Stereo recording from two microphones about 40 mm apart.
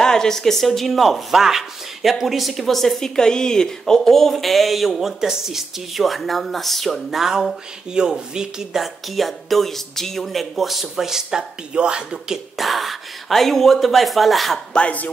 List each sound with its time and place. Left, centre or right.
0.0 s speech: centre
3.2 s speech: centre
7.9 s speech: centre
8.8 s speech: centre; by 12.4 s right
12.5 s speech: centre
14.7 s speech: left